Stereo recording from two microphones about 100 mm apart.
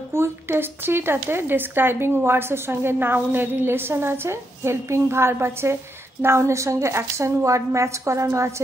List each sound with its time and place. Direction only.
0.1 s a woman's voice: 25° right (ahead or behind)